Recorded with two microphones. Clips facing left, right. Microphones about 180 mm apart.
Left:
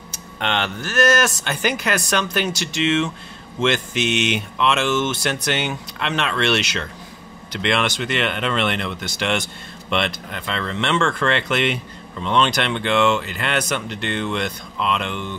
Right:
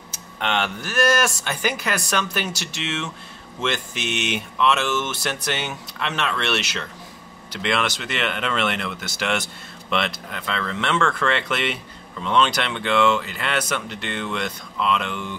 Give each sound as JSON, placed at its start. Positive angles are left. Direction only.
{"t": 0.1, "sound": "speech", "side_deg": -5}
{"t": 4.2, "sound": "speech", "side_deg": -5}
{"t": 4.8, "sound": "speech", "side_deg": 25}
{"t": 5.1, "sound": "speech", "side_deg": -5}